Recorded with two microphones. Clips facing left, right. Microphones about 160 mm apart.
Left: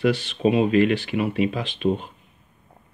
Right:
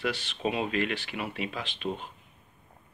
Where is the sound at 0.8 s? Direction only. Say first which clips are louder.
Left 11 dB; 55° left (ahead or behind).